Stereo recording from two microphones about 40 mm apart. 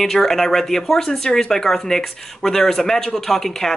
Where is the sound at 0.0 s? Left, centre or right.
Centre.